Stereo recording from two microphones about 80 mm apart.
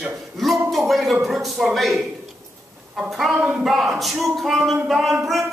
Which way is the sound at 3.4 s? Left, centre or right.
Centre.